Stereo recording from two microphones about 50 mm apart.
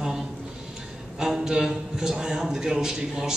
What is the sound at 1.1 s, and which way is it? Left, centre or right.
A man's voice, centre.